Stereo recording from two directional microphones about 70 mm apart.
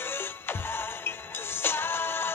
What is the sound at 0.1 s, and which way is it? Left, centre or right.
Music, left.